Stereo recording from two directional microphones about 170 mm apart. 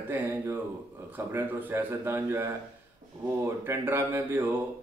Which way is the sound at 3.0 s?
50° right (ahead or behind).